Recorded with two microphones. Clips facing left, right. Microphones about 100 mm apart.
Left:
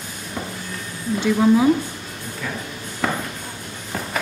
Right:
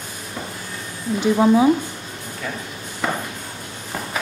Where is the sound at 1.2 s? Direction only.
20° right (ahead or behind).